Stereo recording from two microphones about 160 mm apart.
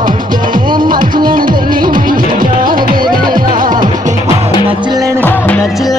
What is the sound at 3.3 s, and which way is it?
Music, 60° right (ahead or behind).